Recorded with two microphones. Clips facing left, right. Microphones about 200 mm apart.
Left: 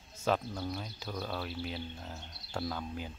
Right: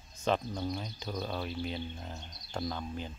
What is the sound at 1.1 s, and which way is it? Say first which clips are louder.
Speech: right 2 dB; 15° right (ahead or behind).